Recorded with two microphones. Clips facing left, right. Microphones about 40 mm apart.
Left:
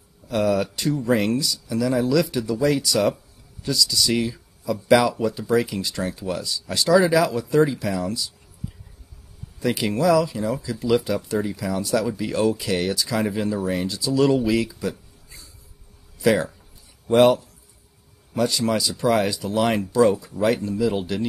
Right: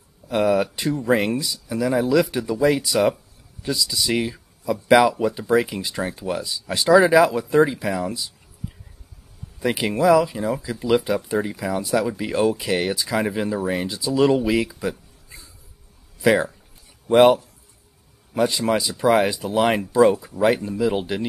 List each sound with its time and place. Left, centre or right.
0.3 s speech: right
9.6 s speech: right